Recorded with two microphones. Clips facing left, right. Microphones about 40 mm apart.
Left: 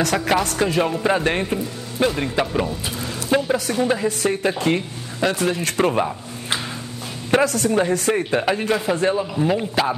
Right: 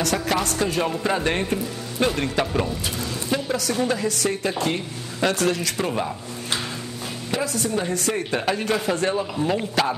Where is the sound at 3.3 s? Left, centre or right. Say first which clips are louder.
Left 5 dB; left.